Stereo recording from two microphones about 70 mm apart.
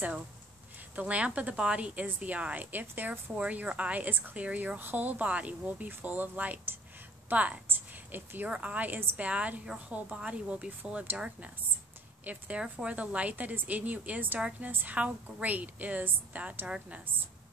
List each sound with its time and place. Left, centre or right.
0.9 s a woman's voice: centre
7.6 s a sound: right
8.5 s a woman's voice: centre